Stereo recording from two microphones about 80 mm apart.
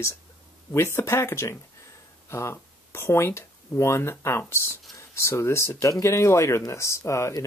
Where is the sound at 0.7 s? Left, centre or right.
Left.